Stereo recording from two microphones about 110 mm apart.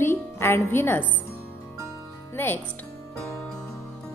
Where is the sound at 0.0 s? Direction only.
20° left (ahead or behind).